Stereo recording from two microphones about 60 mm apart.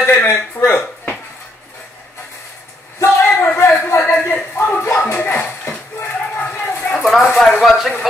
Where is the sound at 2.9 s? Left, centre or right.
Left.